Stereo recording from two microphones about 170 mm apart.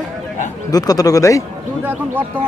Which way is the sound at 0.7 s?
20° left (ahead or behind).